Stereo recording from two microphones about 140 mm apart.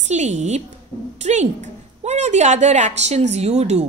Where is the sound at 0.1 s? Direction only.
55° right (ahead or behind).